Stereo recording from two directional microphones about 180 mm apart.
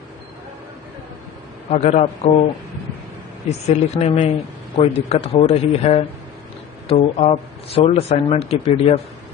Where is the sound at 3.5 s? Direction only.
35° left (ahead or behind).